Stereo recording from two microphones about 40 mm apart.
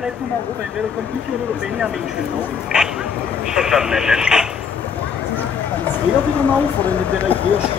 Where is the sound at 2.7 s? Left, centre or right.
Right.